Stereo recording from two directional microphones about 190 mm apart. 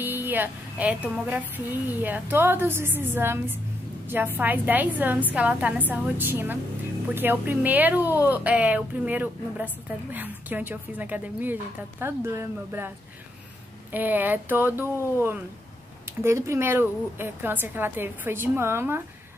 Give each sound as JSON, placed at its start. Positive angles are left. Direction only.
{"t": 0.0, "sound": "a woman's voice", "side_deg": -10}
{"t": 13.9, "sound": "a woman's voice", "side_deg": -10}
{"t": 16.1, "sound": "a woman's voice", "side_deg": -15}